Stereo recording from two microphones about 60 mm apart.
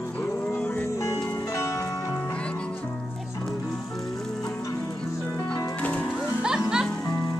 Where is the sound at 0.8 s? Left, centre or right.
Left.